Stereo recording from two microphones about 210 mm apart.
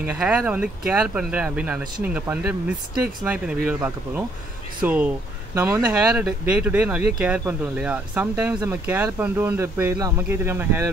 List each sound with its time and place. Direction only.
0.0 s speech: 5° right (ahead or behind)